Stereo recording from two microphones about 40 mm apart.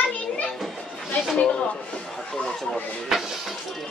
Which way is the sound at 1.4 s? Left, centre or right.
Left.